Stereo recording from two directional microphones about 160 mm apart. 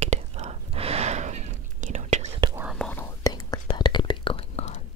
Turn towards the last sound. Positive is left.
turn(degrees=40)  # may be behind; listen again after turning